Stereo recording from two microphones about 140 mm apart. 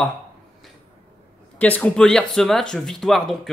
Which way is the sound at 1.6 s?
10° left (ahead or behind).